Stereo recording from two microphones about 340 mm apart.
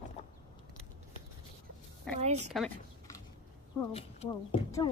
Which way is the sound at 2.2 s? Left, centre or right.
Centre.